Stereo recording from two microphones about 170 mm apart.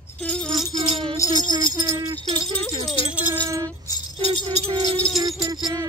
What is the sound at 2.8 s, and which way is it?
Rattle, 30° left (ahead or behind).